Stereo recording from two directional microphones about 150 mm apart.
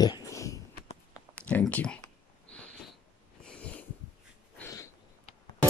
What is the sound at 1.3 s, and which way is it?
Speech, 10° left (ahead or behind).